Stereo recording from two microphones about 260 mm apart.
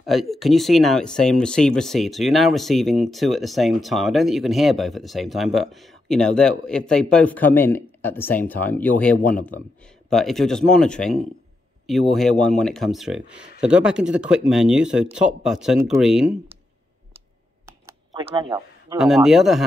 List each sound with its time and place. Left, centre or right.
0.0 s speech: centre
17.6 s computer keyboard: centre
18.2 s speech: centre
18.9 s speech: centre